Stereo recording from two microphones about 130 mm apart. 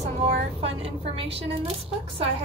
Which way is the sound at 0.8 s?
50° right (ahead or behind).